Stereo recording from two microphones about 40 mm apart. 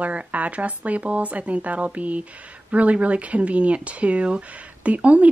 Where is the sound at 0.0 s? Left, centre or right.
Right.